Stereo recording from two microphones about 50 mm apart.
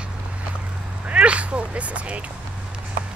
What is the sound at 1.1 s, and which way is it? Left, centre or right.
Speech, right.